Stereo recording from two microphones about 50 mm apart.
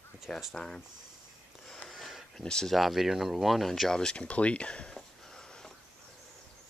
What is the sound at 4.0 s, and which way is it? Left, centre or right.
Speech, centre.